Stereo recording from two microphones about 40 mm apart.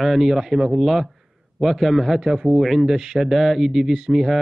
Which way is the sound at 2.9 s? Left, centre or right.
Centre.